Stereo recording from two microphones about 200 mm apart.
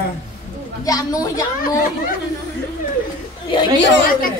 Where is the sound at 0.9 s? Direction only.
20° left (ahead or behind).